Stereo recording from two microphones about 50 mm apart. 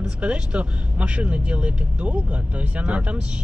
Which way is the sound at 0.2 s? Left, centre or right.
Right.